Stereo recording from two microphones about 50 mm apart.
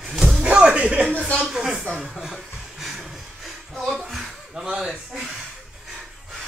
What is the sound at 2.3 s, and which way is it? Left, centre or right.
Chuckle, centre.